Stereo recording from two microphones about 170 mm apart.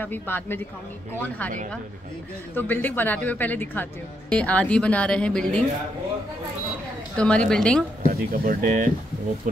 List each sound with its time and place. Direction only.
0.0 s a woman's voice: 10° left (ahead or behind)
2.5 s a woman's voice: 10° left (ahead or behind)
7.2 s a woman's voice: 5° left (ahead or behind)
8.1 s speech: 55° right (ahead or behind)